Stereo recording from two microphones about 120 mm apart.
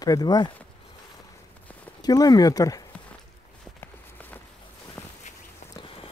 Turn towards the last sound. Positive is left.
turn(degrees=20)  # may be behind; listen again after turning